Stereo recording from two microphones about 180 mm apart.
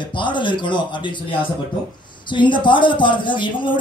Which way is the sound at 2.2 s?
25° left (ahead or behind).